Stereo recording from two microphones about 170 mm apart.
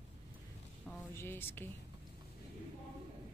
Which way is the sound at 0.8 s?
10° left (ahead or behind).